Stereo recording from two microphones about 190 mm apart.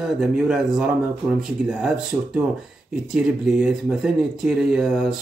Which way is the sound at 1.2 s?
15° right (ahead or behind).